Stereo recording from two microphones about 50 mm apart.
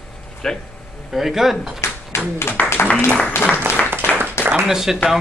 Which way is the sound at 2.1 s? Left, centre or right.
Left.